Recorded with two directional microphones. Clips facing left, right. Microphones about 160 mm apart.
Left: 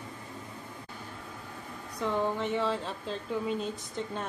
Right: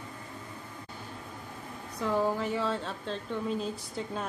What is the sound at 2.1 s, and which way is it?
Speech, 5° right (ahead or behind).